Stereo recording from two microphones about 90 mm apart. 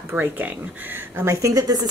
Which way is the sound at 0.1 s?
20° right (ahead or behind).